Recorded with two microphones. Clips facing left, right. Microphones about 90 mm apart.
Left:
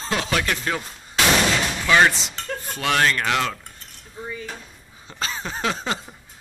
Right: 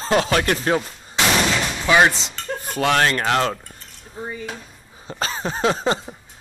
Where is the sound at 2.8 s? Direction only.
35° right (ahead or behind).